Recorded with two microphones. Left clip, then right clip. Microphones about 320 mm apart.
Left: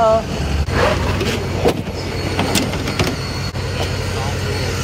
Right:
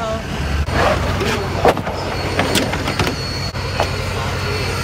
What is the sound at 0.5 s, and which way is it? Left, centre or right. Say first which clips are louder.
Vehicle: right 1 dB; centre.